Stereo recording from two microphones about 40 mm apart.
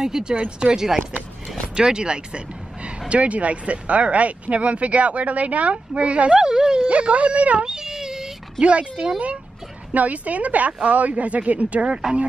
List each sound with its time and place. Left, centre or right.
0.0 s speech: centre
1.8 s speech: right
6.4 s a sound: centre
6.9 s speech: right
7.6 s a sound: centre
8.5 s speech: right